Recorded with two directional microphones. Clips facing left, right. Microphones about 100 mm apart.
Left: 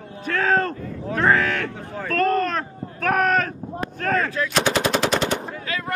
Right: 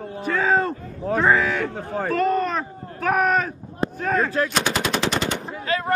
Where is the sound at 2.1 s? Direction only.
5° right (ahead or behind).